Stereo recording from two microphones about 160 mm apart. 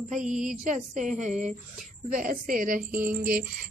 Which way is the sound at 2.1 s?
60° right (ahead or behind).